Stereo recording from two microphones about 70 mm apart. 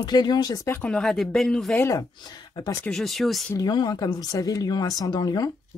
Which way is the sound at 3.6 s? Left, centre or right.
Left.